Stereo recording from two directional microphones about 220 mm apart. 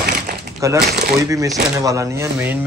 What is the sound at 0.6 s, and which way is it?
A man's voice, 15° right (ahead or behind).